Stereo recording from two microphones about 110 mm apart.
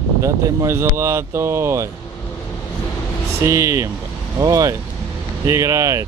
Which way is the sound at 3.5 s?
25° right (ahead or behind).